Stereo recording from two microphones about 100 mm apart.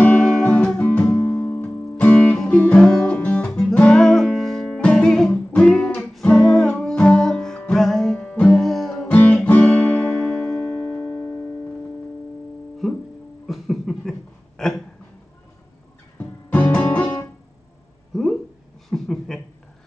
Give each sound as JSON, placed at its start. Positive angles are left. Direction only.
{"t": 0.0, "sound": "music", "side_deg": 10}
{"t": 9.0, "sound": "music", "side_deg": 15}
{"t": 10.8, "sound": "music", "side_deg": 30}
{"t": 12.8, "sound": "music", "side_deg": 0}
{"t": 13.5, "sound": "a sound", "side_deg": 0}
{"t": 14.6, "sound": "hiccup", "side_deg": 0}
{"t": 16.2, "sound": "music", "side_deg": 15}
{"t": 18.1, "sound": "a sound", "side_deg": 5}